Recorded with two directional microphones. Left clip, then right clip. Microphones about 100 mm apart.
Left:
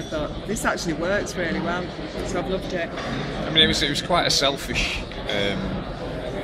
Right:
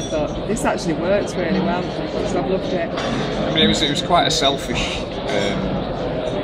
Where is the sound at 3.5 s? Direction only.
40° left (ahead or behind).